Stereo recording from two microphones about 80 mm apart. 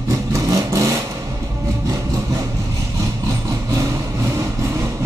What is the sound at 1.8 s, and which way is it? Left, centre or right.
Sawing, right.